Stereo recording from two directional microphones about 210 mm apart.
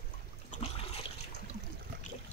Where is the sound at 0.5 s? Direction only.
35° left (ahead or behind).